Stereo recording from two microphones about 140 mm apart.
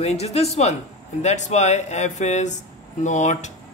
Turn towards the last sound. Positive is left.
turn(degrees=60)  # may be behind; listen again after turning